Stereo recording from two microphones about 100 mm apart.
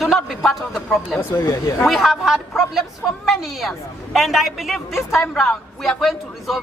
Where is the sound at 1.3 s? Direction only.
30° left (ahead or behind).